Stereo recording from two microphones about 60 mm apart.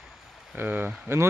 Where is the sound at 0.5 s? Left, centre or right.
Right.